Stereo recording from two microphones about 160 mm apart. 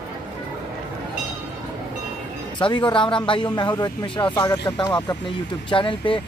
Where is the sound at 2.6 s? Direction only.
30° left (ahead or behind).